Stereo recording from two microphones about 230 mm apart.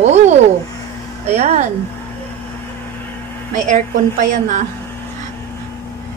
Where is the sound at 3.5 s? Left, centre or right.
Right.